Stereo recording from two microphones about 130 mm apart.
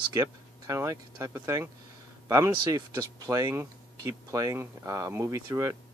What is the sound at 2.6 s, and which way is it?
Speech, 25° right (ahead or behind).